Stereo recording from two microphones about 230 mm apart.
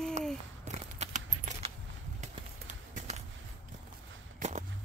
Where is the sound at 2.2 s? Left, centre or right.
Right.